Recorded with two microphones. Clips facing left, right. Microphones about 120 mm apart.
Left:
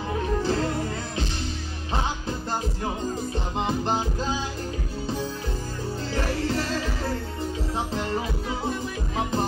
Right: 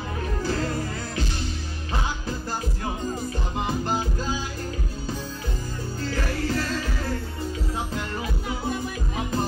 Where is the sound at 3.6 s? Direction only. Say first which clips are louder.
Left 1 dB; 25° left (ahead or behind).